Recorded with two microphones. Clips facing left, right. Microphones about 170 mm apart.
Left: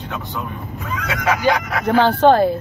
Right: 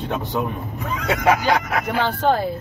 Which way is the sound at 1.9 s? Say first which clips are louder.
Left 8 dB; 80° left.